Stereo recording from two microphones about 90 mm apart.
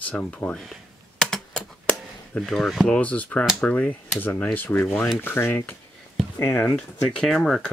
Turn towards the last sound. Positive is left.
turn(degrees=0)  # may be behind; listen again after turning